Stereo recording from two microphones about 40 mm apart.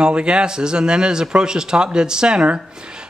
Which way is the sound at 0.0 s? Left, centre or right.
Right.